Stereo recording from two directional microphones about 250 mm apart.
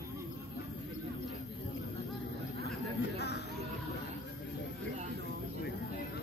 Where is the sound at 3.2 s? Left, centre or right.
Left.